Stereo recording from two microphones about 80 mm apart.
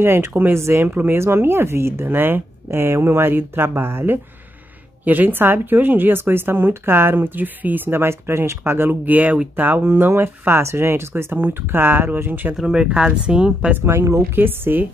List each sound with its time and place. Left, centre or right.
0.0 s a woman's voice: right
12.5 s speech: centre
13.7 s a woman's voice: right